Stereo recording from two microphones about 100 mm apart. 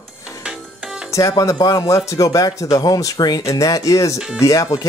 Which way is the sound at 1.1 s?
30° left (ahead or behind).